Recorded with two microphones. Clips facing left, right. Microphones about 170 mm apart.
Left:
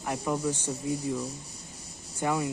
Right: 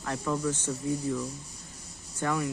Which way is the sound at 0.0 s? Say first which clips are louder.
Left 1 dB; 15° left (ahead or behind).